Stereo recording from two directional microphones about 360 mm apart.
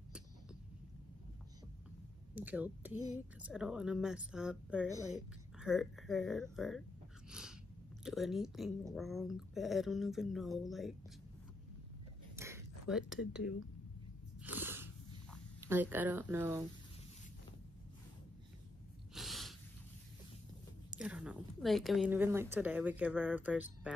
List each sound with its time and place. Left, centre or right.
2.3 s speech: centre
7.2 s sneeze: centre
8.0 s speech: centre
12.4 s a sound: centre
14.4 s a sound: centre
15.6 s speech: centre
19.1 s gasp: centre
20.9 s speech: centre